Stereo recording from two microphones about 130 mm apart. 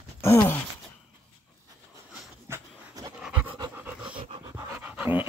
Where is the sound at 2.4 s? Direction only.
25° right (ahead or behind).